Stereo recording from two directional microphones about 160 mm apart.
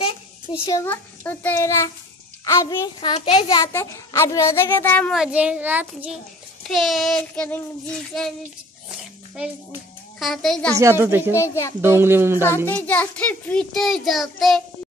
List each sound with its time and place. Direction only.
0.0 s a sound: 30° left (ahead or behind)
0.8 s a child's voice: 10° left (ahead or behind)
3.1 s a child's voice: 35° left (ahead or behind)
3.4 s a child's voice: 20° left (ahead or behind)
5.1 s a child's voice: 5° right (ahead or behind)
6.7 s child singing: centre (ahead or behind)
10.1 s child singing: centre (ahead or behind)
10.7 s a child's voice: 15° right (ahead or behind)
11.3 s a child's voice: 15° left (ahead or behind)
11.8 s a child's voice: 15° right (ahead or behind)
12.4 s a child's voice: 10° left (ahead or behind)